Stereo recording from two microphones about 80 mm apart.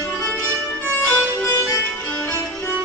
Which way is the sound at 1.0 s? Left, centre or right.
Left.